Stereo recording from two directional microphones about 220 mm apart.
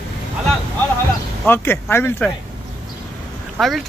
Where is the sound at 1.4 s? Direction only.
10° left (ahead or behind).